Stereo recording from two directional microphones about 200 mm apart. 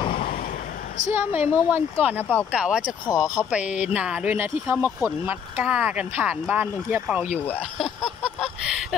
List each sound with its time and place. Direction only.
1.1 s speech: 10° right (ahead or behind)
3.1 s speech: 20° left (ahead or behind)
3.4 s speech: 5° right (ahead or behind)